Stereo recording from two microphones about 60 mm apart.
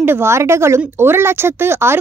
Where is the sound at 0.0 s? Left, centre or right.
Right.